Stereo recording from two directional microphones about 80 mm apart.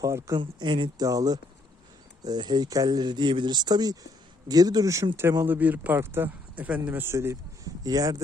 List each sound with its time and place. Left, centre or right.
0.0 s speech: right
0.4 s speech: right
1.0 s speech: right
2.2 s speech: right
5.5 s speech: centre
5.9 s speech: right
7.0 s speech: right
7.6 s speech: right